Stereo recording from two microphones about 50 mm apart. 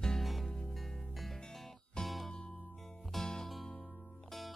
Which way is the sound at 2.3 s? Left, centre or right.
Centre.